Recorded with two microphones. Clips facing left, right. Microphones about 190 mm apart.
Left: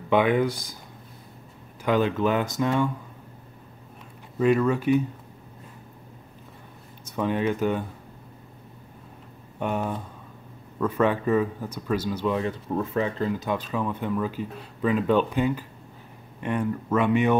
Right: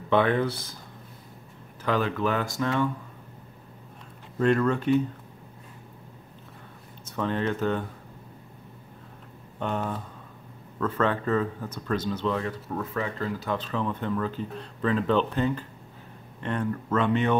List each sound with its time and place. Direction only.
0.1 s speech: 15° left (ahead or behind)
1.9 s speech: 20° left (ahead or behind)
4.4 s speech: 5° left (ahead or behind)
7.1 s speech: 10° left (ahead or behind)
9.6 s speech: 10° left (ahead or behind)